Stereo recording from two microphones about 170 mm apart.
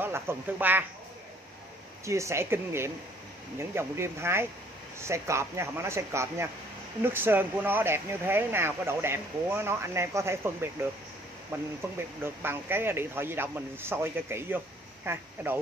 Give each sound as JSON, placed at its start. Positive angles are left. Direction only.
{"t": 0.0, "sound": "speech", "side_deg": -15}
{"t": 2.0, "sound": "speech", "side_deg": -15}